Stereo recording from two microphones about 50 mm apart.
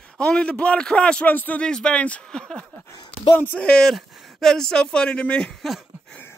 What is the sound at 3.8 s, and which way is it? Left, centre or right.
Speech, centre.